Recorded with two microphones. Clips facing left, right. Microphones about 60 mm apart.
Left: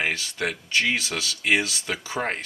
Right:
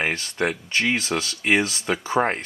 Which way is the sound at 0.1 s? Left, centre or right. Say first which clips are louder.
Right 3 dB; right.